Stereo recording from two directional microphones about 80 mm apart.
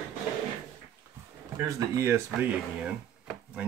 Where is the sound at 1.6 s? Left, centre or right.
Right.